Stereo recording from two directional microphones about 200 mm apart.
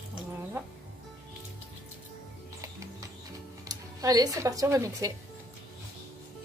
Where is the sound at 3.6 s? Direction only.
20° right (ahead or behind).